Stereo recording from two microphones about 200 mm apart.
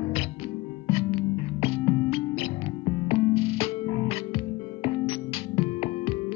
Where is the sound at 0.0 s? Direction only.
30° left (ahead or behind).